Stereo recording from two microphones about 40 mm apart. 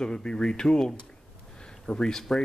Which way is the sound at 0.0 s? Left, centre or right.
Centre.